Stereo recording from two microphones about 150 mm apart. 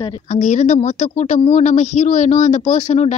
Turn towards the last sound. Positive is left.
turn(degrees=50)  # may be behind; listen again after turning